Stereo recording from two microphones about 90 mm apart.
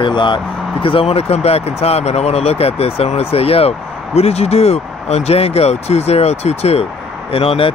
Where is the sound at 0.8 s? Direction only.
90° left.